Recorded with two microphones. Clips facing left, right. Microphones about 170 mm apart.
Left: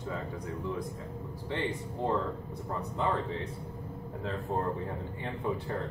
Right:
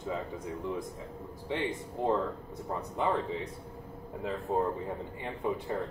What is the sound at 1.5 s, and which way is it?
Speech, 15° right (ahead or behind).